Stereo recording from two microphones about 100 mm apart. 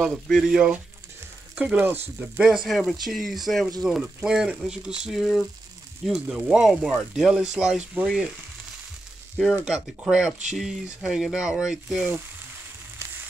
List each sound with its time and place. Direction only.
0.3 s speech: centre (ahead or behind)
1.6 s speech: 15° right (ahead or behind)
2.5 s speech: centre (ahead or behind)
9.4 s speech: 5° right (ahead or behind)
13.0 s frying: 20° right (ahead or behind)